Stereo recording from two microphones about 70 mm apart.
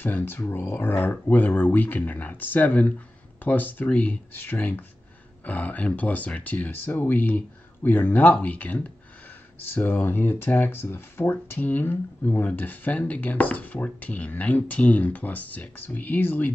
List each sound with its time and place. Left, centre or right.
0.0 s speech: left